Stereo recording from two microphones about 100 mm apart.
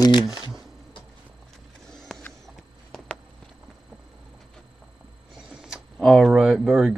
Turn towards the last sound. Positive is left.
turn(degrees=-5)  # may be behind; listen again after turning